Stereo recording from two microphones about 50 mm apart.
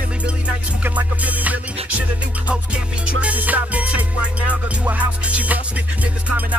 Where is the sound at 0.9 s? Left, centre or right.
Right.